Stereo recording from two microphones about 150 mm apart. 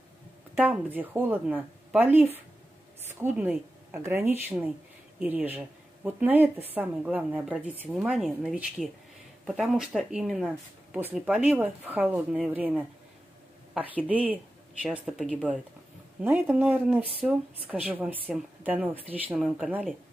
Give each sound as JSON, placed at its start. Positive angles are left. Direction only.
{"t": 0.6, "sound": "speech", "side_deg": -10}